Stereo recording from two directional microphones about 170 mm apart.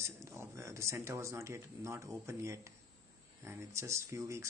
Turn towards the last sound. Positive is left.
turn(degrees=-15)  # may be behind; listen again after turning